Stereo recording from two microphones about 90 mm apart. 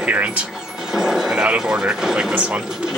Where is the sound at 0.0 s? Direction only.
15° right (ahead or behind).